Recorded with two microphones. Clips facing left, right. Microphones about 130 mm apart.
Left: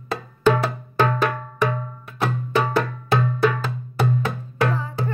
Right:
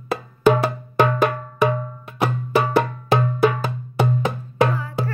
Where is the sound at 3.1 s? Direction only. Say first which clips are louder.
Right 2 dB; 15° right (ahead or behind).